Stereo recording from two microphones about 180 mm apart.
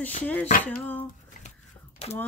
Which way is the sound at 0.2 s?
10° left (ahead or behind).